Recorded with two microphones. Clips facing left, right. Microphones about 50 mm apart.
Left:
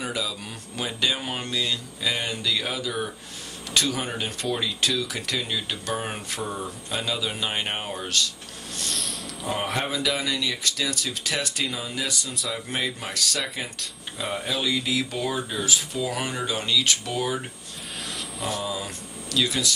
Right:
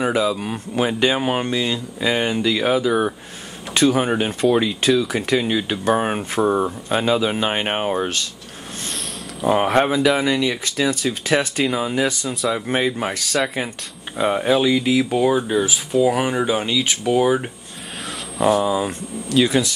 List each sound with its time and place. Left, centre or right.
0.0 s speech: right
6.4 s speech: right
6.9 s speech: right
9.5 s speech: right
18.5 s speech: right